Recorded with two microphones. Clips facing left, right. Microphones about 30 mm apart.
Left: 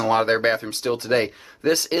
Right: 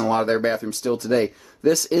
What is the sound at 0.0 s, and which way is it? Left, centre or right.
Speech, left.